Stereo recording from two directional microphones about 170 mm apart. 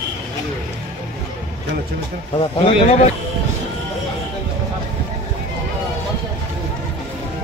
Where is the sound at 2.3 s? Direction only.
35° left (ahead or behind).